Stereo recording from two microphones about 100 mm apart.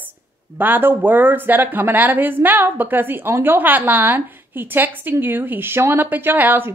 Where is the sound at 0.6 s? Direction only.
20° right (ahead or behind).